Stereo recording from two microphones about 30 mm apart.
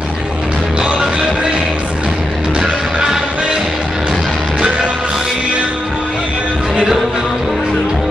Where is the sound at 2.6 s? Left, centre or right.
Centre.